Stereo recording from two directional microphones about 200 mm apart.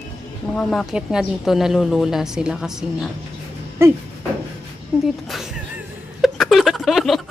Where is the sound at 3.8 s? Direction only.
15° right (ahead or behind).